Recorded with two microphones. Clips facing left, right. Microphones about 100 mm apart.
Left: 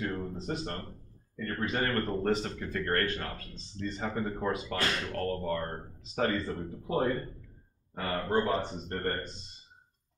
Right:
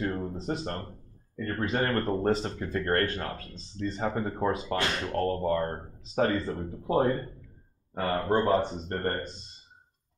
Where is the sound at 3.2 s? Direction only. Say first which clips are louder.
Right 4 dB; 35° right (ahead or behind).